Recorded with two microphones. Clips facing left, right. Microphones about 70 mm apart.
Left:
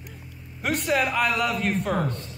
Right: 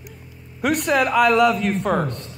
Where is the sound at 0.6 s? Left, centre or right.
Right.